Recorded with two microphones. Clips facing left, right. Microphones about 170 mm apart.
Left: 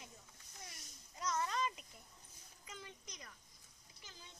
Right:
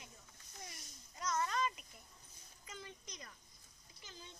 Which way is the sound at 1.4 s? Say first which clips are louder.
Right 1 dB; 25° left (ahead or behind).